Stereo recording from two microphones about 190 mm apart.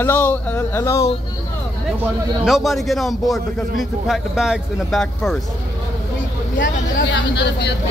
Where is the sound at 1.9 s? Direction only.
Centre (ahead or behind).